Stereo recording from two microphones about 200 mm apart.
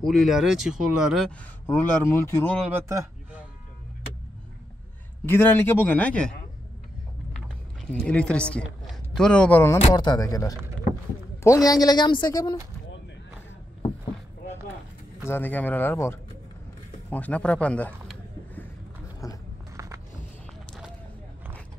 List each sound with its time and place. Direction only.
0.0 s speech: centre (ahead or behind)
1.7 s speech: 10° left (ahead or behind)
2.6 s a man's voice: 15° right (ahead or behind)
5.2 s speech: 10° left (ahead or behind)
7.3 s a woman's voice: 5° left (ahead or behind); by 12.5 s 20° left (ahead or behind)
15.2 s speech: 10° left (ahead or behind)
17.1 s a sound: 5° left (ahead or behind)